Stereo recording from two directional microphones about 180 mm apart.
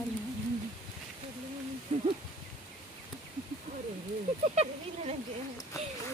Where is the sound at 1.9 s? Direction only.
40° right (ahead or behind).